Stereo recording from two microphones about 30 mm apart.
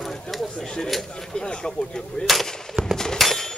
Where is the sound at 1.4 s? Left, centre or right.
Left.